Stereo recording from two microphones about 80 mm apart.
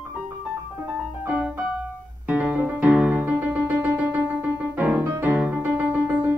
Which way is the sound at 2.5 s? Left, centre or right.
Centre.